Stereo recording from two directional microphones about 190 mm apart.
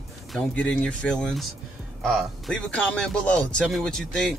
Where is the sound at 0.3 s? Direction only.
5° left (ahead or behind).